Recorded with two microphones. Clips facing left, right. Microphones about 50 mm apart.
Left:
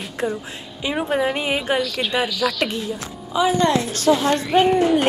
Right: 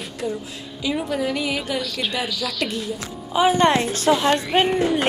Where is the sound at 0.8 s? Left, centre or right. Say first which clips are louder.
Left 3 dB; left.